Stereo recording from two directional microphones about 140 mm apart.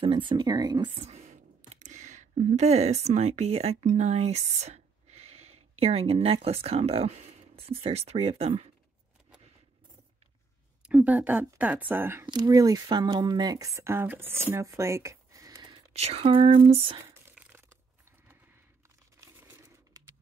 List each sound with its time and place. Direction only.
0.0 s speech: 40° right (ahead or behind)
1.8 s speech: 60° right (ahead or behind)
10.8 s speech: 10° right (ahead or behind)
12.3 s speech: 30° right (ahead or behind)
15.9 s speech: 45° right (ahead or behind)
17.1 s a sound: 15° right (ahead or behind)
19.1 s a sound: 20° right (ahead or behind)